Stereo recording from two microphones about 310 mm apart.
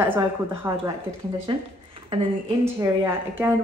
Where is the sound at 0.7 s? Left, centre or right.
Centre.